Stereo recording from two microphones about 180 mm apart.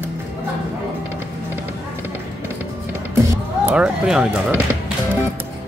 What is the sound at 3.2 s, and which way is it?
Music, 15° right (ahead or behind).